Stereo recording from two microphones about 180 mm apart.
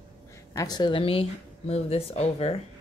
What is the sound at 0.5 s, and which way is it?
Speech, 20° left (ahead or behind).